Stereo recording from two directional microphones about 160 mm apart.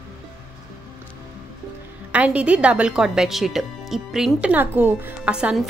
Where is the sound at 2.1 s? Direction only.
5° right (ahead or behind).